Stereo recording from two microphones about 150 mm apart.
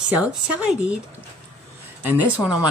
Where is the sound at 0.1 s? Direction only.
10° right (ahead or behind).